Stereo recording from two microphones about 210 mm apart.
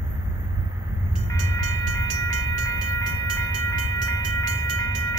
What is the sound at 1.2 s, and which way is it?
Train, 15° left (ahead or behind).